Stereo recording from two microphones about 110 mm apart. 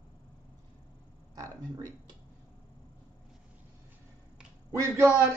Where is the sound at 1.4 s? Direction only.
30° right (ahead or behind).